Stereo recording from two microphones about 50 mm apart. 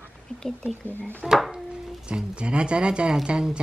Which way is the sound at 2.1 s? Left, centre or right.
Right.